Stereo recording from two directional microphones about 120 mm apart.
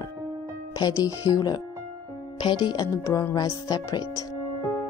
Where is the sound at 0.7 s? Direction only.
30° left (ahead or behind).